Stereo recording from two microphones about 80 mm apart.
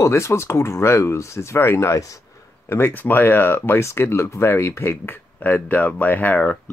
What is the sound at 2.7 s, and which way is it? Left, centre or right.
Speech, left.